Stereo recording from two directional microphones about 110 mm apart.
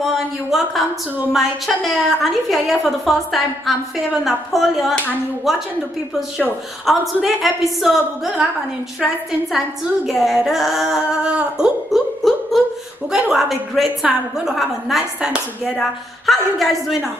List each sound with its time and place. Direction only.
0.0 s a woman's voice: centre (ahead or behind)
1.9 s a woman's voice: centre (ahead or behind)
6.9 s a woman's voice: centre (ahead or behind)
10.0 s a woman's voice: centre (ahead or behind)